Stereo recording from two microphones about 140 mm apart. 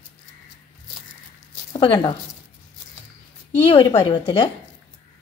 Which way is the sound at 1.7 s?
40° left (ahead or behind).